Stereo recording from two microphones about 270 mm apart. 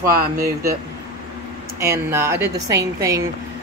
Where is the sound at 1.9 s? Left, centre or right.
Centre.